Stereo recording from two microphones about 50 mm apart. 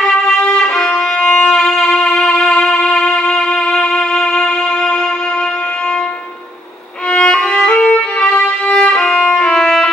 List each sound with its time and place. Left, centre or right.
0.7 s music: centre
7.1 s violin: left; by 9.8 s centre